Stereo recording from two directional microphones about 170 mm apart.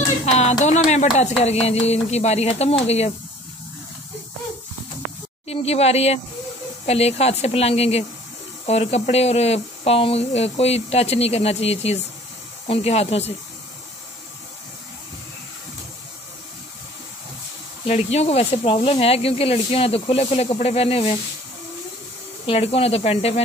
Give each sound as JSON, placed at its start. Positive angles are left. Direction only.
{"t": 0.2, "sound": "speech", "side_deg": 40}
{"t": 5.5, "sound": "speech", "side_deg": 35}
{"t": 17.8, "sound": "speech", "side_deg": 40}
{"t": 22.5, "sound": "speech", "side_deg": 35}